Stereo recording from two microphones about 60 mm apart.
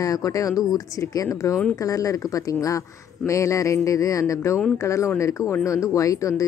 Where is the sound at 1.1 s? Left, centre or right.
Left.